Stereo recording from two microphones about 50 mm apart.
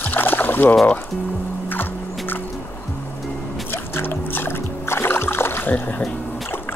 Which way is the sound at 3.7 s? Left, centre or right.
Left.